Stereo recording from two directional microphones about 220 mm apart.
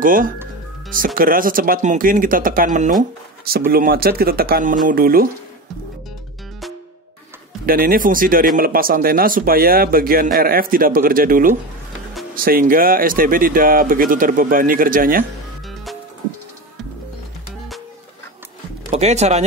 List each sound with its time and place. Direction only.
0.0 s speech: 40° right (ahead or behind)
7.6 s speech: 40° right (ahead or behind)
15.7 s music: centre (ahead or behind)
18.9 s speech: 30° right (ahead or behind)